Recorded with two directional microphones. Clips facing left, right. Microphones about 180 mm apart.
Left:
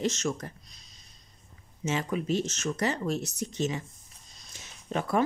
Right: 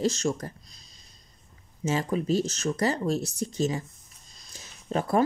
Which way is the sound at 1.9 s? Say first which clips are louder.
Right 3 dB; 35° right (ahead or behind).